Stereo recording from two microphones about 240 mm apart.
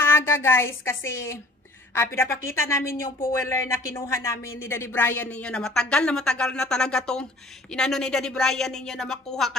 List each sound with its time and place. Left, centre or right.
0.0 s a woman's voice: centre
2.8 s speech: left
3.4 s speech: centre